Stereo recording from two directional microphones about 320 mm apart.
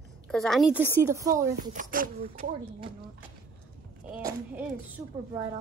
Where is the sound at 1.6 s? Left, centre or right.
Right.